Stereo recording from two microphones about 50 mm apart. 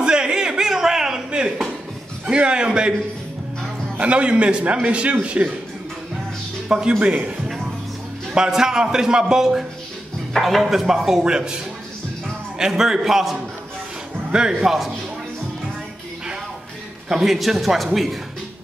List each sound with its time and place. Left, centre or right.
0.0 s a sound: centre
2.2 s a man's voice: right
4.0 s a man's voice: right
6.7 s a man's voice: centre
8.4 s a man's voice: centre
12.5 s a man's voice: centre
14.6 s a man's voice: centre
17.1 s a man's voice: centre